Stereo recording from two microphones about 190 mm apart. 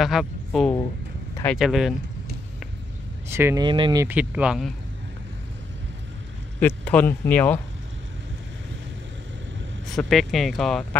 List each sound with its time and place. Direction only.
0.0 s speech: centre (ahead or behind)
3.3 s speech: 15° right (ahead or behind)
3.6 s speech: 25° right (ahead or behind)
4.0 s speech: 10° right (ahead or behind)
6.6 s speech: 10° left (ahead or behind)
9.8 s speech: centre (ahead or behind)